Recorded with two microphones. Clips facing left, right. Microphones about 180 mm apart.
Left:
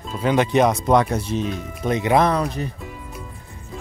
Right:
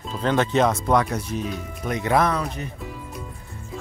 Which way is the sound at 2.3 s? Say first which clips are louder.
Left 4 dB; 35° left (ahead or behind).